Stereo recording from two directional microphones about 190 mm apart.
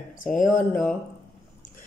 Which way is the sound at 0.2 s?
45° left (ahead or behind).